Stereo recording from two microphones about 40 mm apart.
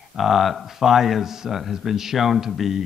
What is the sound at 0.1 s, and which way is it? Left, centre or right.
Speech, centre.